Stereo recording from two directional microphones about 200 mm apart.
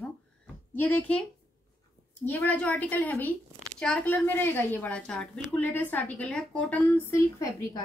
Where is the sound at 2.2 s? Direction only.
10° left (ahead or behind).